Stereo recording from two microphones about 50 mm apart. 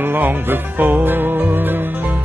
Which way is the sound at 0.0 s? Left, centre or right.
Right.